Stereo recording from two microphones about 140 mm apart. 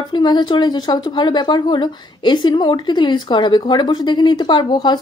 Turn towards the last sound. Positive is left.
turn(degrees=30)  # may be behind; listen again after turning